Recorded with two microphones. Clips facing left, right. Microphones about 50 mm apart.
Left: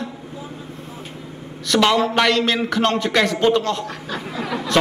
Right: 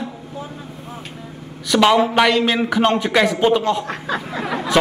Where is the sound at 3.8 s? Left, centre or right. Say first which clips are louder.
Right 4 dB; right.